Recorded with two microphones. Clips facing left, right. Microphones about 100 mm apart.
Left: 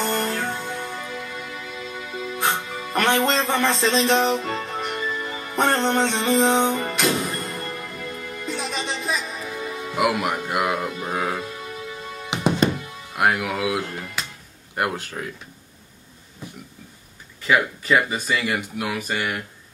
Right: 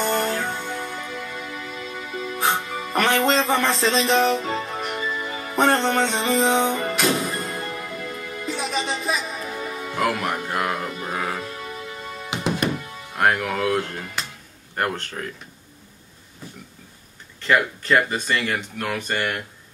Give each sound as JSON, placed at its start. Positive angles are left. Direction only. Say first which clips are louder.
{"t": 0.0, "sound": "music", "louder": "right 1 dB", "side_deg": 0}
{"t": 9.9, "sound": "speech", "louder": "left 2 dB", "side_deg": 10}
{"t": 12.3, "sound": "music", "louder": "left 4 dB", "side_deg": 20}
{"t": 12.7, "sound": "speech", "louder": "even", "side_deg": 5}
{"t": 17.4, "sound": "speech", "louder": "even", "side_deg": 5}